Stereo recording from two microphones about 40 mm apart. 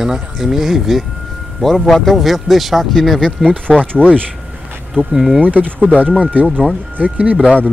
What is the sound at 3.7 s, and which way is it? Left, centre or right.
Speech, left.